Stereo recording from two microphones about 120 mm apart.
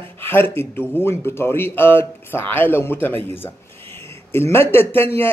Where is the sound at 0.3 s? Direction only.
20° left (ahead or behind).